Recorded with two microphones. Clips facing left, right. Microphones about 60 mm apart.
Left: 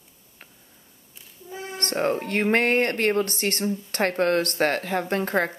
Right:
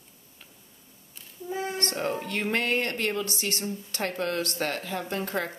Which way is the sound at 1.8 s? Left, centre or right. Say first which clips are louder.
Left 5 dB; left.